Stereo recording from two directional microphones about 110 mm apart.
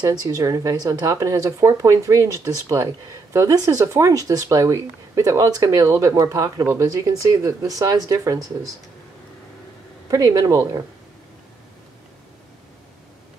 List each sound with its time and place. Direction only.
0.0 s speech: 35° right (ahead or behind)
10.1 s speech: 35° right (ahead or behind)